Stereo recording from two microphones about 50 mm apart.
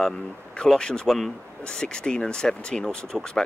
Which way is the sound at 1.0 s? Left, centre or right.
Centre.